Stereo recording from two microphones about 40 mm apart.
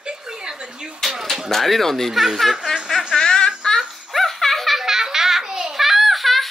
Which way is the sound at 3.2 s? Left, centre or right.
Centre.